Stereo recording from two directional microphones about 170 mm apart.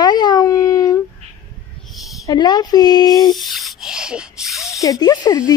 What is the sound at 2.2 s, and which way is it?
Speech, 25° left (ahead or behind).